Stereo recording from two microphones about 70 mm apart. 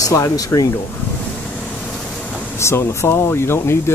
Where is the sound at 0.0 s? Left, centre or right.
Left.